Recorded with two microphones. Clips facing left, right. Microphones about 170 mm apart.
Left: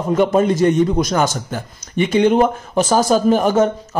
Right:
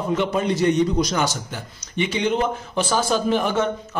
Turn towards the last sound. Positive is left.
turn(degrees=40)  # may be behind; listen again after turning